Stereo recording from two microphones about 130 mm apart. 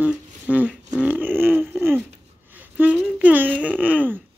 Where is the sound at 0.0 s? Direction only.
10° right (ahead or behind).